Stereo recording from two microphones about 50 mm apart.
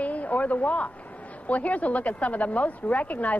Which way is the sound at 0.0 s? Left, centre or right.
Left.